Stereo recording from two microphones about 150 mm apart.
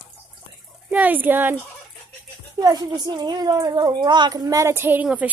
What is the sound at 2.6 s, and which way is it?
Speech, 25° right (ahead or behind).